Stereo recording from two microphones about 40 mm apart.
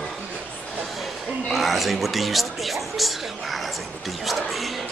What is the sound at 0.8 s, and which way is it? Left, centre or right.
Speech, centre.